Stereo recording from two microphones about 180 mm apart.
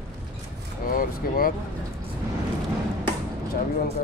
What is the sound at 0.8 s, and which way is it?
Speech, 50° left (ahead or behind).